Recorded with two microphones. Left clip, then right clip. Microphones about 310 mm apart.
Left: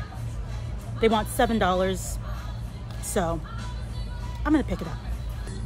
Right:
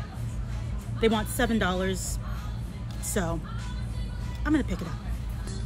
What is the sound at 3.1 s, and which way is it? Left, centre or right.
Speech, centre.